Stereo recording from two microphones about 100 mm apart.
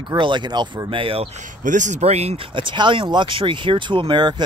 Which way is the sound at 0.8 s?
60° right (ahead or behind).